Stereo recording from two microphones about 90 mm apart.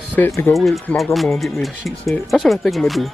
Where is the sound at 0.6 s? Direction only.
Centre (ahead or behind).